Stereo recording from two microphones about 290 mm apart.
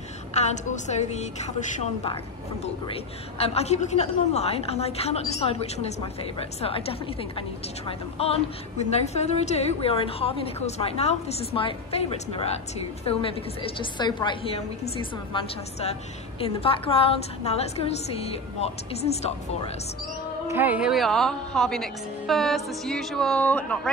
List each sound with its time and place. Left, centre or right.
0.3 s a woman's voice: left
20.4 s a woman's voice: centre